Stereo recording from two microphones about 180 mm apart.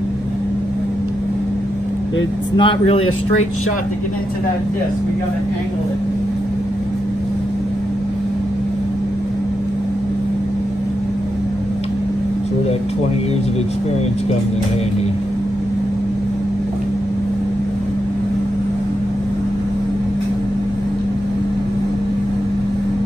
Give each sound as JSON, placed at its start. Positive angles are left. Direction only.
{"t": 2.5, "sound": "speech", "side_deg": 30}